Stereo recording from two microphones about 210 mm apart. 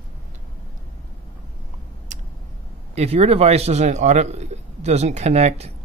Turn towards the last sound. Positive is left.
turn(degrees=-30)  # may be behind; listen again after turning